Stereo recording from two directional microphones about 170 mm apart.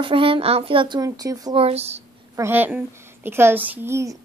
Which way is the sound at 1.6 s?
40° right (ahead or behind).